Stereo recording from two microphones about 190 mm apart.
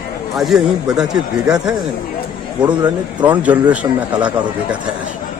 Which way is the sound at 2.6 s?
20° right (ahead or behind).